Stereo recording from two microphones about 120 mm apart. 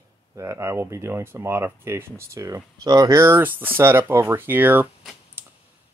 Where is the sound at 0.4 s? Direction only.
25° right (ahead or behind).